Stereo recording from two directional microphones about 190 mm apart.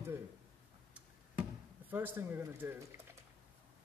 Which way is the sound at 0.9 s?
10° right (ahead or behind).